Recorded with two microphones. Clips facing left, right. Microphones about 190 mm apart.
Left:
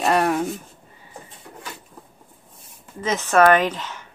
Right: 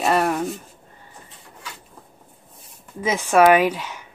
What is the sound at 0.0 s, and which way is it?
Speech, centre (ahead or behind).